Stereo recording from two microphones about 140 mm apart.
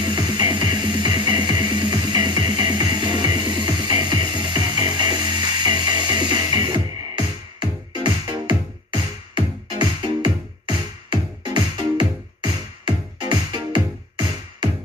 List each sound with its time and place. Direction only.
0.0 s music: 30° right (ahead or behind)